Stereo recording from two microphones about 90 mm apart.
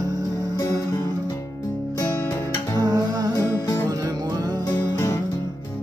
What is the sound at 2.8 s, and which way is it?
Music, 45° right (ahead or behind).